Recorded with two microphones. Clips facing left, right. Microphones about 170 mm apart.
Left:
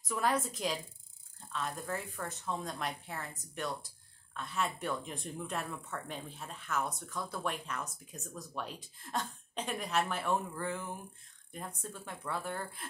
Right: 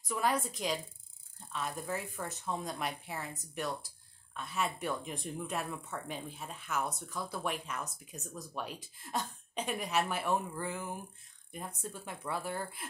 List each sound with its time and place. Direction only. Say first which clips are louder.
0.1 s a woman's voice: even; centre (ahead or behind)